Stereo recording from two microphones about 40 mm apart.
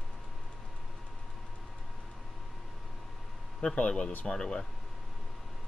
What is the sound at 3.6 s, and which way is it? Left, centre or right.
A man's voice, left.